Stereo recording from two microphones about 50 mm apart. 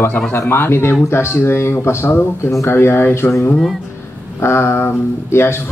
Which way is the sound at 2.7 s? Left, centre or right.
Left.